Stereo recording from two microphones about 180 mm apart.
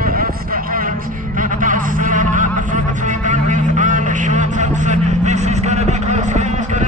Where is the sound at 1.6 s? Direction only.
45° right (ahead or behind).